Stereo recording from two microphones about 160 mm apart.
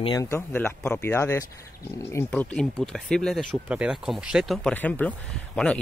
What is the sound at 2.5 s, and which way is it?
Speech, 5° left (ahead or behind).